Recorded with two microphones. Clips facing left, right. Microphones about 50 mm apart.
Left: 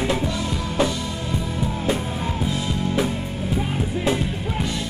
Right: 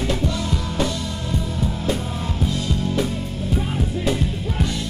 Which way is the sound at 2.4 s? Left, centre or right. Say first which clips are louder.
Right 3 dB; centre.